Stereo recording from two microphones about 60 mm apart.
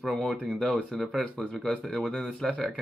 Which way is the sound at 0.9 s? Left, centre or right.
Centre.